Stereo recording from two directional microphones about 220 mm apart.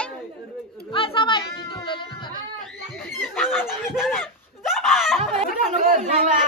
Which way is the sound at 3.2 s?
Centre (ahead or behind).